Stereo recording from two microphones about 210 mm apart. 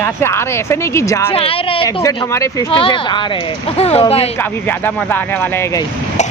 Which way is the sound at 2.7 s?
25° left (ahead or behind).